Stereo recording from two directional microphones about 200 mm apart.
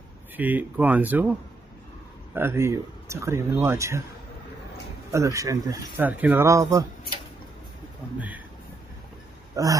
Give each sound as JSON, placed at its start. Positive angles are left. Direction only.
{"t": 0.4, "sound": "speech", "side_deg": -10}
{"t": 2.3, "sound": "speech", "side_deg": -10}
{"t": 5.1, "sound": "speech", "side_deg": -15}